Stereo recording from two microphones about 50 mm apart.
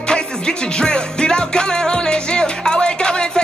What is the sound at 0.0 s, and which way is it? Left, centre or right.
Music, centre.